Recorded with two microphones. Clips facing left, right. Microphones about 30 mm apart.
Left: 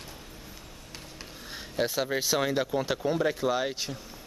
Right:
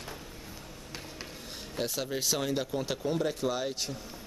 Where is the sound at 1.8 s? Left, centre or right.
Left.